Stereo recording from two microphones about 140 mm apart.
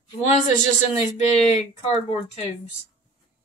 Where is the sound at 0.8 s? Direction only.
50° left (ahead or behind).